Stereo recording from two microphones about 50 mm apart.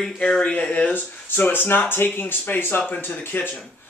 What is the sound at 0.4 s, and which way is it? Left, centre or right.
Speech, left.